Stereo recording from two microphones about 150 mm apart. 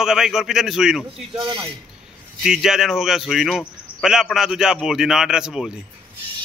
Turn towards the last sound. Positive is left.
turn(degrees=-5)  # may be behind; listen again after turning